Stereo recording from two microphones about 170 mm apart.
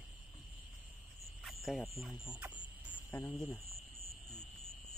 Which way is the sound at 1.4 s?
Centre (ahead or behind).